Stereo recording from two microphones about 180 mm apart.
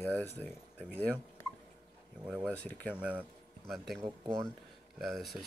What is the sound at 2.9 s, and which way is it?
Speech, 5° right (ahead or behind).